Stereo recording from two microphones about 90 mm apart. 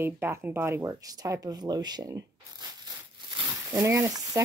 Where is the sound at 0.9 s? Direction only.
45° right (ahead or behind).